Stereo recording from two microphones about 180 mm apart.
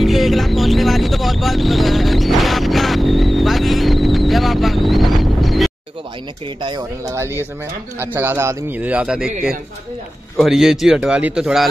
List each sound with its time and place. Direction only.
0.0 s vehicle: centre (ahead or behind)
6.6 s a man's voice: 20° right (ahead or behind); by 9.3 s 5° right (ahead or behind)
10.3 s a man's voice: centre (ahead or behind)